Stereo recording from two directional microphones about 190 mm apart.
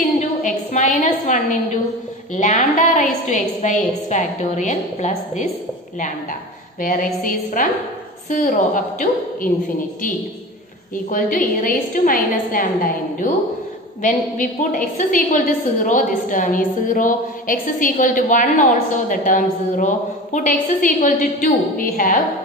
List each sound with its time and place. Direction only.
0.4 s a sound: 45° left (ahead or behind)
2.3 s a woman's voice: 40° left (ahead or behind)
6.8 s a woman's voice: 45° left (ahead or behind)
11.1 s a woman's voice: 45° left (ahead or behind)